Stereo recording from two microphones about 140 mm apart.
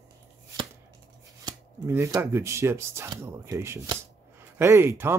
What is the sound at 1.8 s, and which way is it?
Speech, 20° right (ahead or behind).